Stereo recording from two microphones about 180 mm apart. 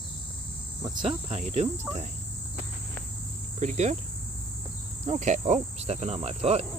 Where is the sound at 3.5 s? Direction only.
40° right (ahead or behind).